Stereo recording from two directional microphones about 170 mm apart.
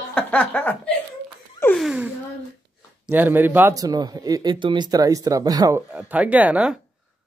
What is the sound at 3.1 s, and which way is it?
Speech, 10° right (ahead or behind).